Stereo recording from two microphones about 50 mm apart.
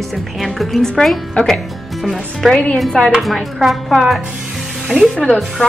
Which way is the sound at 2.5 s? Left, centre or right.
Centre.